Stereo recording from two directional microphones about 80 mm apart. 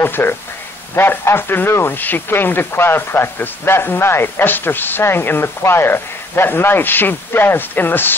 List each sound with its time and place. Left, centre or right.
0.0 s speech: left